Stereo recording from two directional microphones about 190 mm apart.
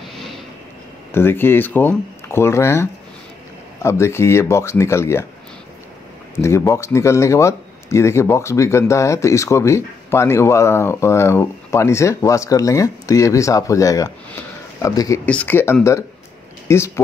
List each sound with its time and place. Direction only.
0.1 s vehicle: centre (ahead or behind)
1.1 s speech: 10° left (ahead or behind)
6.3 s speech: 15° left (ahead or behind)